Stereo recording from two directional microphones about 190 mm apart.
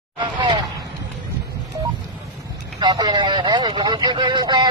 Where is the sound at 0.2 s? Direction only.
25° right (ahead or behind).